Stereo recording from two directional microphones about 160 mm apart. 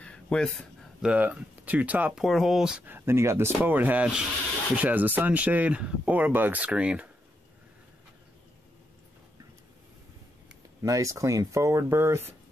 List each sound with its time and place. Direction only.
0.0 s a sound: 5° left (ahead or behind)
1.1 s speech: 10° right (ahead or behind)
10.8 s speech: 20° right (ahead or behind)